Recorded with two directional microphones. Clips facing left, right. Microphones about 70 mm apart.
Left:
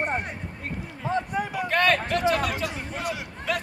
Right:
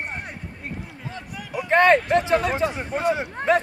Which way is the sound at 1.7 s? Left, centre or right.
Right.